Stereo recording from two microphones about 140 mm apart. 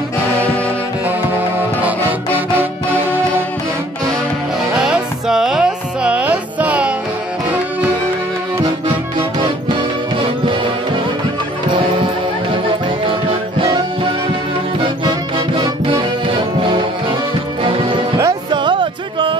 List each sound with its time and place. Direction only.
1.8 s music: 10° right (ahead or behind)
4.7 s music: 5° right (ahead or behind)
15.0 s music: 35° right (ahead or behind)
17.7 s music: 35° right (ahead or behind)